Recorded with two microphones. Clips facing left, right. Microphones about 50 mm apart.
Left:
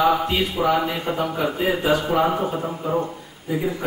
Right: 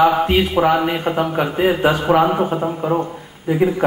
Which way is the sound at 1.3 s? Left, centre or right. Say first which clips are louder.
Right 5 dB; right.